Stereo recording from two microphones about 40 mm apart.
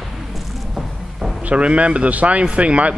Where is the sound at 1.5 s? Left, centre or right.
Right.